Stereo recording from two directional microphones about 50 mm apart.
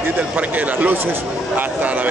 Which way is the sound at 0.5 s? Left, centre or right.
Right.